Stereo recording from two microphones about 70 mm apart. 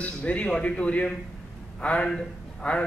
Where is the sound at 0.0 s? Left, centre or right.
Centre.